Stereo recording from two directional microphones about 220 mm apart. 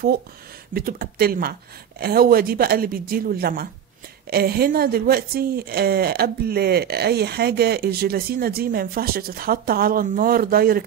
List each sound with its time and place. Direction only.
0.7 s a woman's voice: 40° right (ahead or behind)